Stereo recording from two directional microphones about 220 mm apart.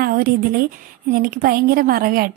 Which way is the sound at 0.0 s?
40° right (ahead or behind).